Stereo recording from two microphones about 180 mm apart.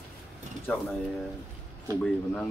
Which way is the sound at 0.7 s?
10° left (ahead or behind).